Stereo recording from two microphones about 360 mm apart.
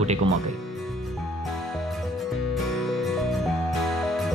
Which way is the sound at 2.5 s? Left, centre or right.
Centre.